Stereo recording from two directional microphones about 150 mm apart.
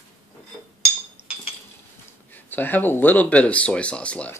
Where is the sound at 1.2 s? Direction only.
15° left (ahead or behind).